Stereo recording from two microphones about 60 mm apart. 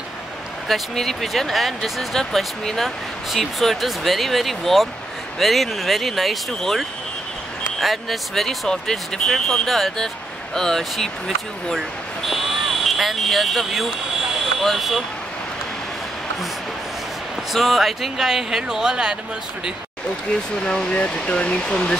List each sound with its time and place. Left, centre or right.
0.7 s speech: centre
12.3 s a sound: centre
14.4 s vehicle: centre
17.5 s speech: centre
20.6 s speech: centre